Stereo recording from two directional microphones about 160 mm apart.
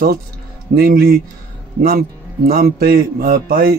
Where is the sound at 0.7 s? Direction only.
70° right (ahead or behind).